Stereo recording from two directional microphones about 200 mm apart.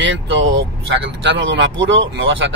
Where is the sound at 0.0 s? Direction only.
70° right (ahead or behind).